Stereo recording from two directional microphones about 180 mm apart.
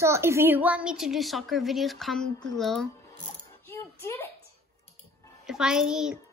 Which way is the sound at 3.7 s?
15° left (ahead or behind).